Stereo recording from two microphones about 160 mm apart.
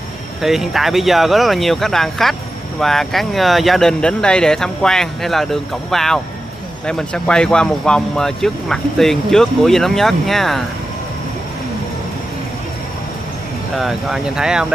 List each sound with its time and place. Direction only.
0.4 s speech: centre (ahead or behind)
13.7 s speech: centre (ahead or behind)